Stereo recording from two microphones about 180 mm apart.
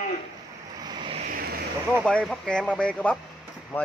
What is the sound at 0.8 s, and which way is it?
Vehicle, 25° right (ahead or behind).